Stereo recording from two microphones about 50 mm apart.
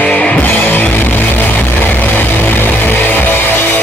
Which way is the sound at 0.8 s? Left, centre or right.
Left.